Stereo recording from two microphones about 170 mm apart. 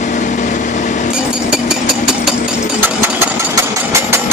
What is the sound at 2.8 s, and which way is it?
Engine, 10° right (ahead or behind).